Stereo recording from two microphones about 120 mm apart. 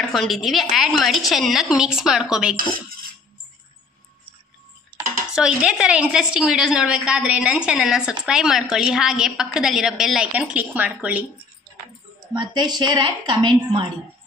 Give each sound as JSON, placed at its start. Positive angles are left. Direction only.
{"t": 0.1, "sound": "a woman's voice", "side_deg": 0}
{"t": 5.3, "sound": "a woman's voice", "side_deg": -5}
{"t": 12.4, "sound": "a woman's voice", "side_deg": -35}